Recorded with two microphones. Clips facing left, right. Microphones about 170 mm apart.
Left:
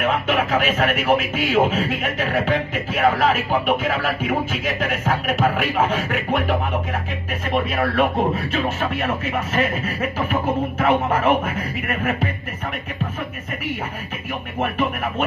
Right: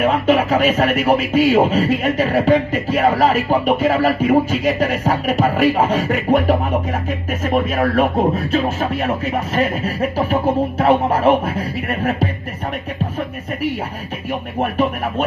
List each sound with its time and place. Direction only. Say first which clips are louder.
0.0 s speech: right 6 dB; 40° right (ahead or behind)
14.6 s speech: right 3 dB; 40° right (ahead or behind)